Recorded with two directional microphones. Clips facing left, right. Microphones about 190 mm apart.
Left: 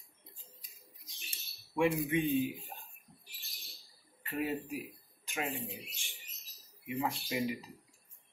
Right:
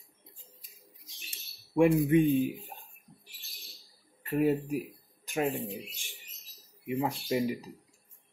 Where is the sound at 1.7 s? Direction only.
45° right (ahead or behind).